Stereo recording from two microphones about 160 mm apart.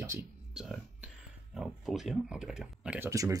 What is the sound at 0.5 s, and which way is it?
Speech, centre (ahead or behind).